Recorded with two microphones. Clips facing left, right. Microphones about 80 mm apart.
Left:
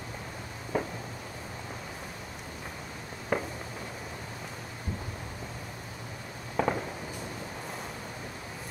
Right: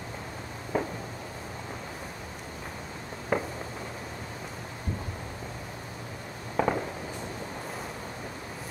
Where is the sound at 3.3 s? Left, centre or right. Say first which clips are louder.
Right 2 dB; centre.